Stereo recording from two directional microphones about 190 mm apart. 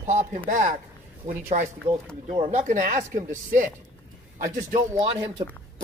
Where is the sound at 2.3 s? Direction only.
30° right (ahead or behind).